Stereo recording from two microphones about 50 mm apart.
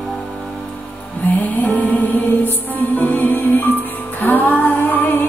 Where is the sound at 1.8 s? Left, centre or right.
Left.